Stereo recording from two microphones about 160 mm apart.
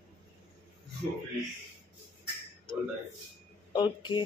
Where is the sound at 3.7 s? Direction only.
30° left (ahead or behind).